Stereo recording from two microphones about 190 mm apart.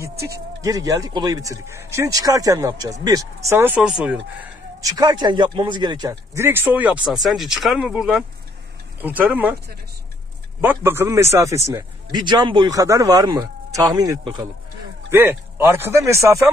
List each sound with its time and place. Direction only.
0.6 s speech: 20° right (ahead or behind)
4.8 s speech: 20° right (ahead or behind)
10.6 s speech: 10° right (ahead or behind)